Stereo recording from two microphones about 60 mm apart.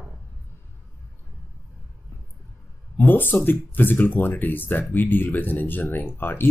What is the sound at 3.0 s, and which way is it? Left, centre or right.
Speech, left.